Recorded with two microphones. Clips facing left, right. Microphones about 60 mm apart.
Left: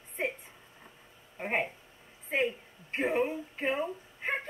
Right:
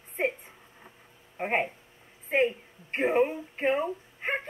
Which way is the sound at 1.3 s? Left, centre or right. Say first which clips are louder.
Right 4 dB; right.